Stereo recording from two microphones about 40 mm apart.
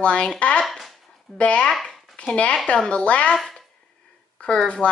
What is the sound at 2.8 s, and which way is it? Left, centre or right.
Speech, left.